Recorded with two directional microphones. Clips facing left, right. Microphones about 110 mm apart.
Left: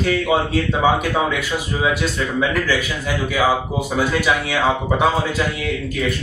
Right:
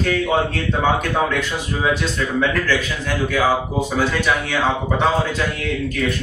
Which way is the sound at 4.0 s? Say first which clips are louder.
Left 2 dB; 10° left (ahead or behind).